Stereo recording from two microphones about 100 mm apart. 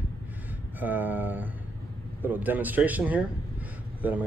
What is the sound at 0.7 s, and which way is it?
A man's voice, 20° right (ahead or behind).